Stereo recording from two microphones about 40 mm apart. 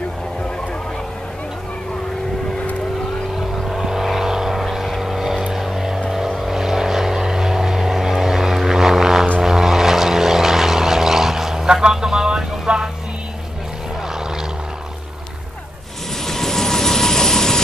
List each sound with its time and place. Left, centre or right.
3.6 s vehicle: centre
11.9 s a sound: centre
16.3 s vehicle: centre